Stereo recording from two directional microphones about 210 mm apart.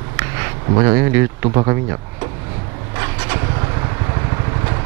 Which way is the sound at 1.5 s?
20° right (ahead or behind).